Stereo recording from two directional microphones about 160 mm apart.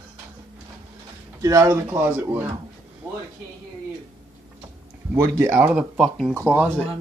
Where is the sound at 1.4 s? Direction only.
20° right (ahead or behind).